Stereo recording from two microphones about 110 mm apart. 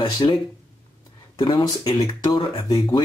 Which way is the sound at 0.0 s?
40° left (ahead or behind).